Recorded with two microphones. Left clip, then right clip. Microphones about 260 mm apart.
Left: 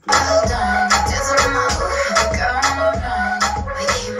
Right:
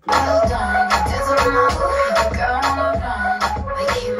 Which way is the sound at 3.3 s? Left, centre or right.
Centre.